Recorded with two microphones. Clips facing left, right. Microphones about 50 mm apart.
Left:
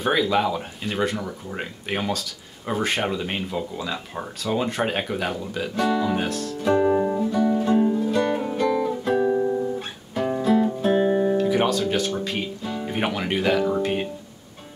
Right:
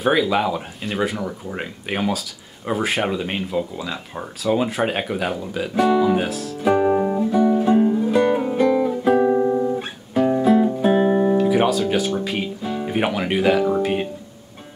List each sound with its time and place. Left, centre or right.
0.0 s speech: centre
6.7 s music: centre
9.2 s music: right
10.1 s guitar: centre